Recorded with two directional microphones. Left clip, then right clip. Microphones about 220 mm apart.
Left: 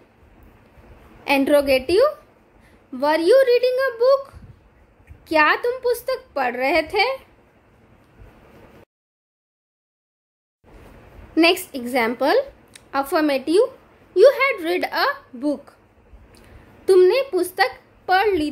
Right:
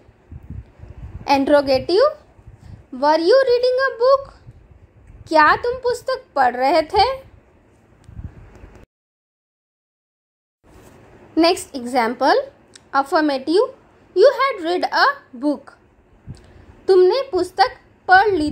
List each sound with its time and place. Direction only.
1.2 s a woman's voice: 5° right (ahead or behind)
5.2 s a woman's voice: 5° right (ahead or behind)
11.3 s a woman's voice: centre (ahead or behind)
16.3 s a sound: centre (ahead or behind)
17.3 s a woman's voice: centre (ahead or behind)